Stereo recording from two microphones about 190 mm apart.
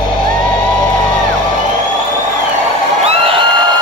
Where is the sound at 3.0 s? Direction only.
25° right (ahead or behind).